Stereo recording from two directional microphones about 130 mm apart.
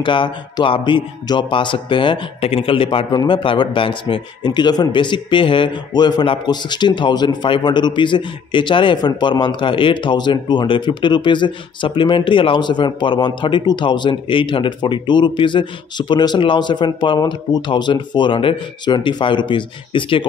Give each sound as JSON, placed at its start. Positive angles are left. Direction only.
{"t": 0.0, "sound": "speech", "side_deg": 40}